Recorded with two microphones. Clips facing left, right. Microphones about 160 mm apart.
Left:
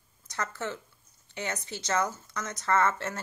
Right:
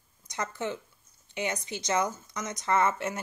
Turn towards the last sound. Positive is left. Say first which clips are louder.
# even
turn(degrees=-15)  # may be behind; listen again after turning